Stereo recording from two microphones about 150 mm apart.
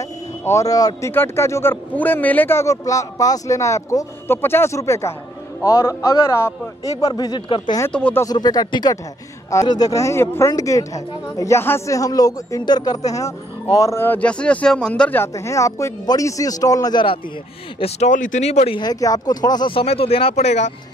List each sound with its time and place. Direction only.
0.5 s a man's voice: 20° left (ahead or behind)
7.9 s a man's voice: 10° left (ahead or behind)
8.2 s a man's voice: 25° left (ahead or behind)
17.7 s speech: 45° left (ahead or behind)
18.8 s speech: 25° left (ahead or behind); by 20.7 s 50° left (ahead or behind)